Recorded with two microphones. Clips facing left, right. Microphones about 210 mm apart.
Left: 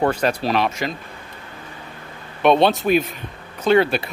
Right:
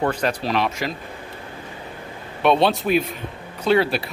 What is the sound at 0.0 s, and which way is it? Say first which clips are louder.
Speech: left 3 dB; 40° left (ahead or behind).